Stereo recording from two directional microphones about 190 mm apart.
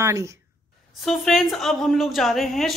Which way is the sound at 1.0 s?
Centre (ahead or behind).